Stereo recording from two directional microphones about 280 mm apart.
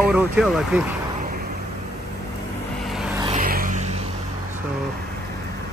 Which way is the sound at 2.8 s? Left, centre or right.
Centre.